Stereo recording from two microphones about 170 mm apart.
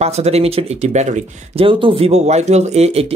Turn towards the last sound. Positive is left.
turn(degrees=-35)  # may be behind; listen again after turning